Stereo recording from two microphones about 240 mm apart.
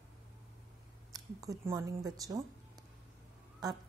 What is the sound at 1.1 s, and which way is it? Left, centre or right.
Speech, centre.